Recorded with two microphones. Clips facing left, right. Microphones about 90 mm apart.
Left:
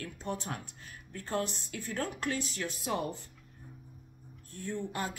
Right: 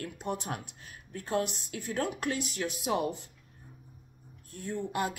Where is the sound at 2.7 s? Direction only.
65° right (ahead or behind).